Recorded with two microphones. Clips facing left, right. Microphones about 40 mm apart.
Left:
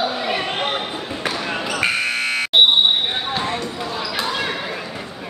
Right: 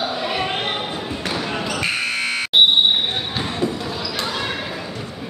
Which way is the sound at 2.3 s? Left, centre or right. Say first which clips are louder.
Even; centre.